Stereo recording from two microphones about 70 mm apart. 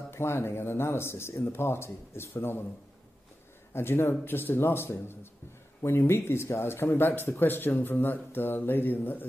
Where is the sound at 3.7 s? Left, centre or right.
Left.